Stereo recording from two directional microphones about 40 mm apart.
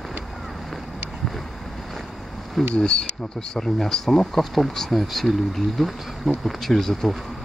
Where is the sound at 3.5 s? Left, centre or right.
Centre.